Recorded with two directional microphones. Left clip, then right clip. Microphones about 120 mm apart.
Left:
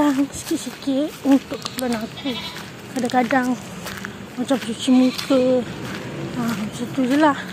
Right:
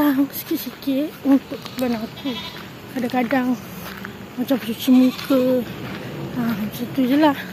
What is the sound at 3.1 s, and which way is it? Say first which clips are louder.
Speech: left 2 dB; 20° right (ahead or behind).